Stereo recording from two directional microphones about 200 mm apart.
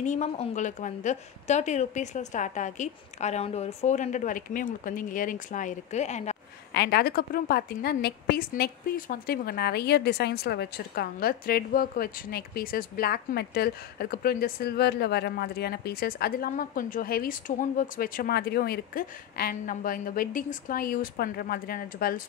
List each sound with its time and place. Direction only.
0.0 s a woman's voice: 35° left (ahead or behind)
6.7 s a woman's voice: 50° left (ahead or behind)